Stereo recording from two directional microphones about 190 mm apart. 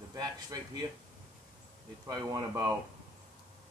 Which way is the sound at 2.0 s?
20° right (ahead or behind).